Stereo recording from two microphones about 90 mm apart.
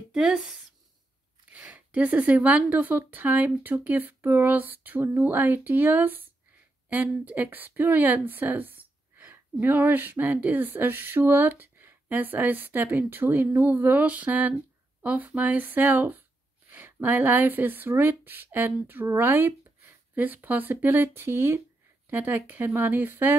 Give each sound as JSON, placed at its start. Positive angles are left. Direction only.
{"t": 0.1, "sound": "speech", "side_deg": -5}